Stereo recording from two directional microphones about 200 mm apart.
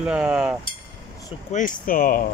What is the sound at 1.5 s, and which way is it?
Speech, 40° left (ahead or behind).